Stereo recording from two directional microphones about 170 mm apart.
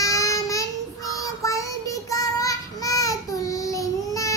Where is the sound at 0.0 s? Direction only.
20° left (ahead or behind).